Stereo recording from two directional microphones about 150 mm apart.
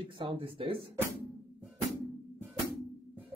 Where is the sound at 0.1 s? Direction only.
30° right (ahead or behind).